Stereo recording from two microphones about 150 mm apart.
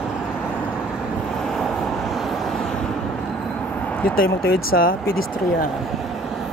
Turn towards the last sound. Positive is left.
turn(degrees=85)